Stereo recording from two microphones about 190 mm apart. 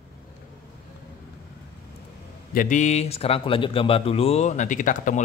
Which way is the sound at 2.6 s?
40° left (ahead or behind).